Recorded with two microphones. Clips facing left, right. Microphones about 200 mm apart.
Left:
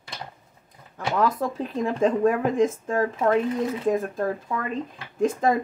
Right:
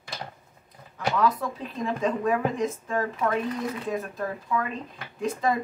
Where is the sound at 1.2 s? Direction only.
45° left (ahead or behind).